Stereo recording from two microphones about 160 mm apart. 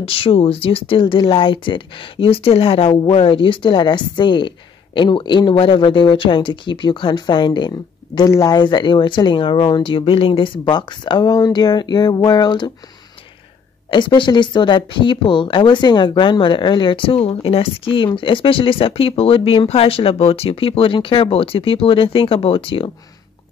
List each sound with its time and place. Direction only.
0.0 s speech: 35° left (ahead or behind)
13.8 s speech: 30° left (ahead or behind)